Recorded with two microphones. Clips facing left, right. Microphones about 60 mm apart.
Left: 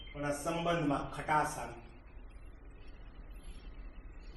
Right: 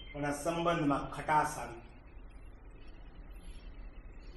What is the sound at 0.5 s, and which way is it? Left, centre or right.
Speech, right.